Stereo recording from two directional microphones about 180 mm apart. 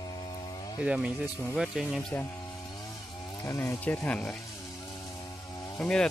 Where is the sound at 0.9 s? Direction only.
5° right (ahead or behind).